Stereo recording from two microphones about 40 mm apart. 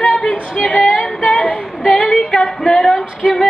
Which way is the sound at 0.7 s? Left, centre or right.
Centre.